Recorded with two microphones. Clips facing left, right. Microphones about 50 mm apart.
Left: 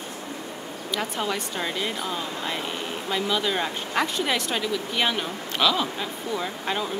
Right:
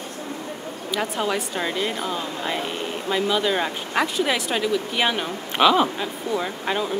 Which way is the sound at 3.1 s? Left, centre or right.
Centre.